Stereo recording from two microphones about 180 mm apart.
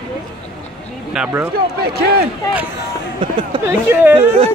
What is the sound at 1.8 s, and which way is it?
Speech, 60° right (ahead or behind).